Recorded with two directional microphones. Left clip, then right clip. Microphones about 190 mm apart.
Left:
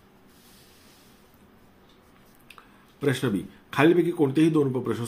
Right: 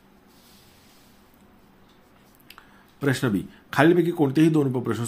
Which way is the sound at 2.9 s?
40° right (ahead or behind).